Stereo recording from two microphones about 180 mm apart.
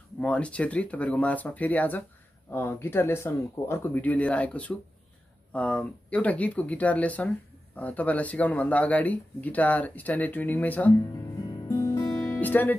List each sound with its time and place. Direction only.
0.2 s speech: 5° left (ahead or behind)
11.7 s music: 20° left (ahead or behind)
12.1 s music: 10° left (ahead or behind)